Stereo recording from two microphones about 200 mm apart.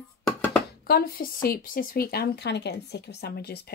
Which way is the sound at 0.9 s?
45° left (ahead or behind).